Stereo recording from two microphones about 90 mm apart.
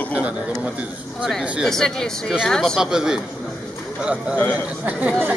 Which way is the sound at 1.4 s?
15° right (ahead or behind).